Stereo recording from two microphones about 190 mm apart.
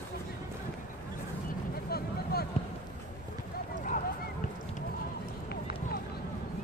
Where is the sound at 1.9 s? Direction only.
55° left (ahead or behind).